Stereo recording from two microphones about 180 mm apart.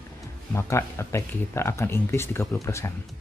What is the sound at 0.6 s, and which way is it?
Speech, 15° left (ahead or behind).